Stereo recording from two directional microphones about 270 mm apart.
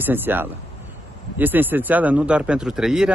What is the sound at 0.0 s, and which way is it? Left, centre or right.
Speech, centre.